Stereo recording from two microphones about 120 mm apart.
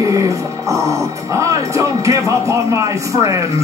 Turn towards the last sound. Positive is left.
turn(degrees=-30)  # may be behind; listen again after turning